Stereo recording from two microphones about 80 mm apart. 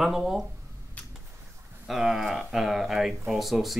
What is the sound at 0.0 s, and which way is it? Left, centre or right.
Speech, centre.